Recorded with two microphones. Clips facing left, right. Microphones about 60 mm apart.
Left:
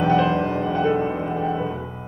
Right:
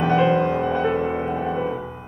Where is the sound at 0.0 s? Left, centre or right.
Right.